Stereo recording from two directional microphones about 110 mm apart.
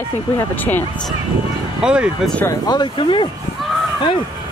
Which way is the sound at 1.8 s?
10° right (ahead or behind).